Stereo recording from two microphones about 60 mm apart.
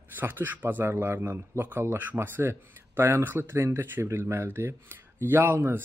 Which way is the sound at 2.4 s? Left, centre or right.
Right.